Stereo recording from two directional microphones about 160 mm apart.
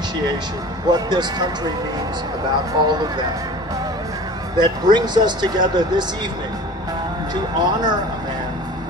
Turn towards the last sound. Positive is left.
turn(degrees=-25)  # may be behind; listen again after turning